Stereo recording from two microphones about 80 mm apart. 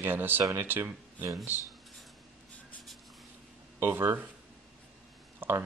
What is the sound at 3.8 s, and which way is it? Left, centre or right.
Speech, right.